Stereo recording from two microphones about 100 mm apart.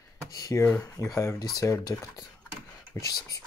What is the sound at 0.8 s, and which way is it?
Speech, 35° left (ahead or behind).